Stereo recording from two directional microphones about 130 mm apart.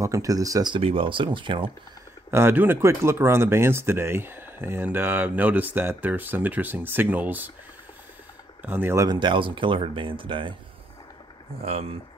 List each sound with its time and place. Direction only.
0.0 s speech: 25° right (ahead or behind)
0.7 s speech: 45° right (ahead or behind)
2.3 s speech: 15° right (ahead or behind)
8.6 s speech: 15° right (ahead or behind)
9.0 s speech: 35° right (ahead or behind)
11.6 s speech: 50° right (ahead or behind)